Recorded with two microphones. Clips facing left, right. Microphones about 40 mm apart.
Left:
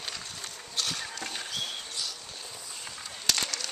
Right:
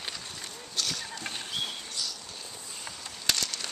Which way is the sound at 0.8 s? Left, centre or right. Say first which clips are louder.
Left 1 dB; centre.